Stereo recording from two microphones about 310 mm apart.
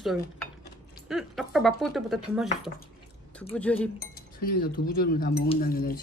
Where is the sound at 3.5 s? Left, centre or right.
Centre.